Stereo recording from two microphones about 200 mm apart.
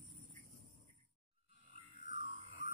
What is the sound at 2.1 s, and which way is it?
Music, 30° right (ahead or behind).